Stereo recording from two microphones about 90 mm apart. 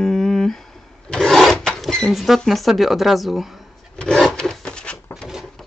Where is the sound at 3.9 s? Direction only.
10° left (ahead or behind).